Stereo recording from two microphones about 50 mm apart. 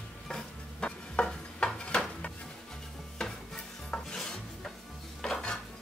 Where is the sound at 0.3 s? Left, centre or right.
Centre.